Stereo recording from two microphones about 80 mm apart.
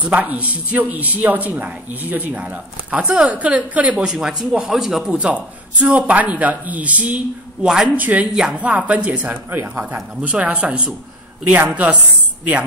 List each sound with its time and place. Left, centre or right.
0.1 s speech: centre
5.1 s speech: centre
7.9 s speech: centre
10.2 s speech: centre